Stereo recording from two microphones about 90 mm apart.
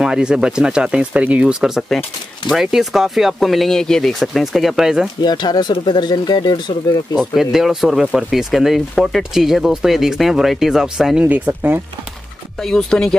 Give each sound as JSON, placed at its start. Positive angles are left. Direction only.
{"t": 0.0, "sound": "speech", "side_deg": -10}
{"t": 5.2, "sound": "speech", "side_deg": 55}
{"t": 7.2, "sound": "speech", "side_deg": 0}
{"t": 11.2, "sound": "speech", "side_deg": -20}
{"t": 12.6, "sound": "speech", "side_deg": 5}